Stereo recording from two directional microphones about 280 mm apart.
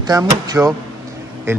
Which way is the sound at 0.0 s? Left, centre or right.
Centre.